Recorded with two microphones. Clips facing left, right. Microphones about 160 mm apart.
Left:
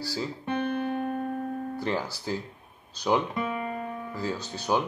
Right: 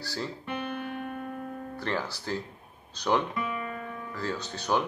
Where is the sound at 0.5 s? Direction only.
35° left (ahead or behind).